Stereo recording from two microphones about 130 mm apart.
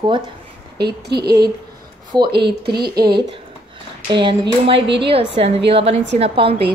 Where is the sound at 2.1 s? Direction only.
35° right (ahead or behind).